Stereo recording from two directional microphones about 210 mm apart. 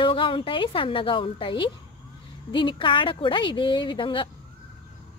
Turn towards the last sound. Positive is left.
turn(degrees=25)  # may be behind; listen again after turning